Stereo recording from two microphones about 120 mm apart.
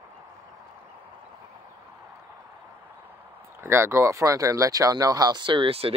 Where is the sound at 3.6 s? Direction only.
20° right (ahead or behind).